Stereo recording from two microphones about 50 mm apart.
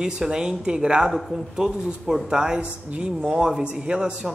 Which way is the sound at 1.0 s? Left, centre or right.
Centre.